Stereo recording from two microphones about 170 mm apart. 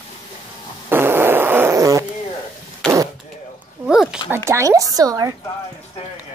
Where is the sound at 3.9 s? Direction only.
5° right (ahead or behind).